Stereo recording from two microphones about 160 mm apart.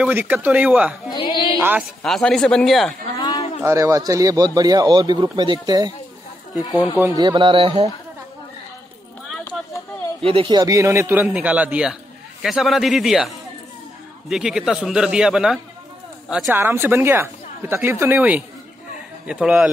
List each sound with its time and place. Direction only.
0.0 s speech: 10° right (ahead or behind)
1.1 s speech: 30° left (ahead or behind)
1.6 s speech: 10° right (ahead or behind)
2.0 s a man's voice: 5° left (ahead or behind)
3.2 s a sound: 25° left (ahead or behind)
3.6 s speech: 20° right (ahead or behind)
7.2 s speech: 30° right (ahead or behind)
10.2 s speech: 35° right (ahead or behind)
10.6 s a man's voice: 20° right (ahead or behind); by 13.3 s centre (ahead or behind)
14.3 s a man's voice: 5° right (ahead or behind)
16.5 s a man's voice: 15° right (ahead or behind)